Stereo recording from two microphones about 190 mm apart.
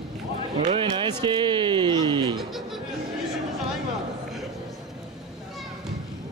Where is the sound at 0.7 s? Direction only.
25° right (ahead or behind).